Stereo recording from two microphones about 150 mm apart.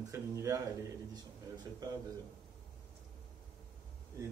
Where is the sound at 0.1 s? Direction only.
20° right (ahead or behind).